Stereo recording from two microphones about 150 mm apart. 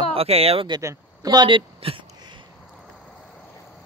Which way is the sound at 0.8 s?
20° right (ahead or behind).